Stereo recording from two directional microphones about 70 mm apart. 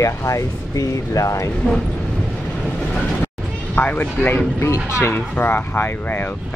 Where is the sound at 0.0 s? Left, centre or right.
Left.